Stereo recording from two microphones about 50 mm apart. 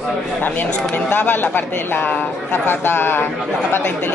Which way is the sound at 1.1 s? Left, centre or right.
Left.